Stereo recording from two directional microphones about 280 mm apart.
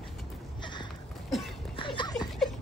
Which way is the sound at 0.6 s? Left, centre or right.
Centre.